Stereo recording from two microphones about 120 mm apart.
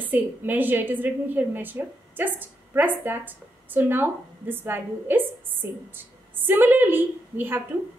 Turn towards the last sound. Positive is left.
turn(degrees=-15)  # may be behind; listen again after turning